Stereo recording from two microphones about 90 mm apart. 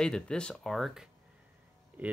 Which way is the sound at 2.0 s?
20° right (ahead or behind).